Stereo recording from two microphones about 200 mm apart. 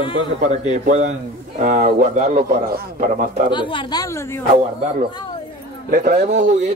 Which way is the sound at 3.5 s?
25° left (ahead or behind).